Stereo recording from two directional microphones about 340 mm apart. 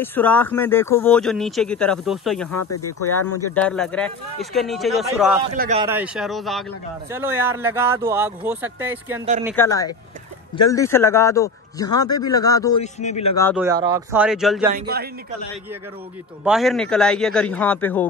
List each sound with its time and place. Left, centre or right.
0.0 s speech: centre
2.6 s speech: left
3.5 s speech: centre
5.6 s speech: centre
5.9 s speech: centre
9.6 s a man's voice: centre
13.6 s speech: centre
16.4 s speech: centre